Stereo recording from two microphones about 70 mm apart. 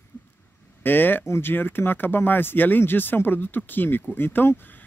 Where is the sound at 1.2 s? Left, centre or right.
Left.